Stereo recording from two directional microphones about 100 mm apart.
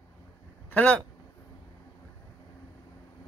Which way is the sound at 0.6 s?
15° left (ahead or behind).